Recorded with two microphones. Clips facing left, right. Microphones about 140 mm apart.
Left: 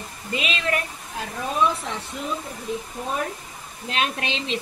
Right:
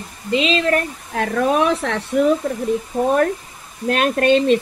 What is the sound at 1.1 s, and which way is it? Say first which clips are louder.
Speech: right 9 dB; 75° right (ahead or behind).